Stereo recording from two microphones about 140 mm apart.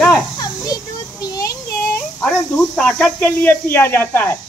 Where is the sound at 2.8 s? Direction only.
5° left (ahead or behind).